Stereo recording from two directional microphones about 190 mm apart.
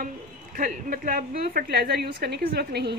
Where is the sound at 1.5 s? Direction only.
55° right (ahead or behind).